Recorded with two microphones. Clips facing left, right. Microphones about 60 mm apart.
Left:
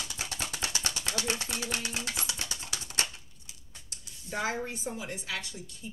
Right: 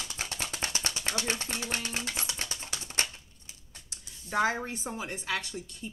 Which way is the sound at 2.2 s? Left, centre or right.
Right.